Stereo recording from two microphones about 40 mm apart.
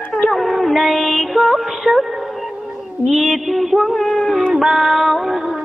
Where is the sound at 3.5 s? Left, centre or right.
Centre.